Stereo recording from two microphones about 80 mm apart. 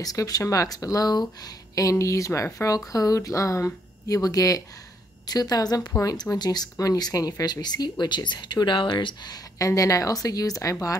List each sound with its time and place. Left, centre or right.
0.0 s speech: left
9.6 s speech: left